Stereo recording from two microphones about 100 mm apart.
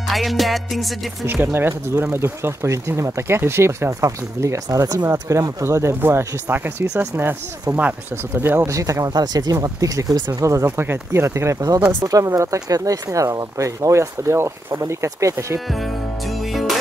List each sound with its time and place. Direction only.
0.1 s music: centre (ahead or behind)
1.2 s speech: 20° right (ahead or behind)
8.6 s speech: 35° right (ahead or behind)
10.4 s speech: 30° right (ahead or behind)
15.7 s music: centre (ahead or behind)